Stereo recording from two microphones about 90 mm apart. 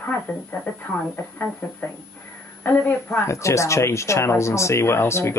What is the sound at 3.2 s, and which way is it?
Speech, 35° left (ahead or behind).